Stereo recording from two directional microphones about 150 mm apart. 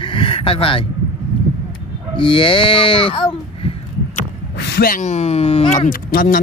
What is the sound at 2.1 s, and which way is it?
Speech, 35° left (ahead or behind).